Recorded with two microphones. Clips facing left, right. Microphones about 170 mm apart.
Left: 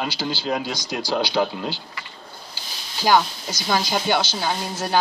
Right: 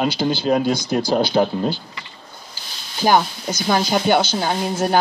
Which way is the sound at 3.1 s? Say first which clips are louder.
Right 1 dB; 50° right (ahead or behind).